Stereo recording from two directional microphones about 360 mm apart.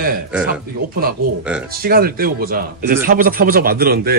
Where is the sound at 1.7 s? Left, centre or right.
Right.